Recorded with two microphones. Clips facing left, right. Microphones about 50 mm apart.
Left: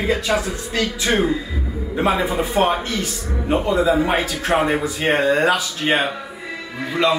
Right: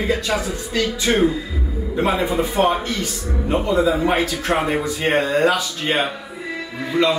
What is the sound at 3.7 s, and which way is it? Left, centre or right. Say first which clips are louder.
A man's voice: even; centre.